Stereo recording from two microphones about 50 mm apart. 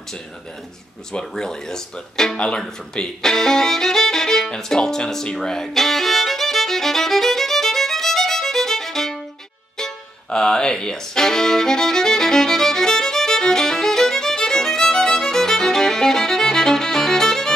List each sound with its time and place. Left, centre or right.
1.1 s speech: centre
4.6 s violin: centre
9.8 s music: centre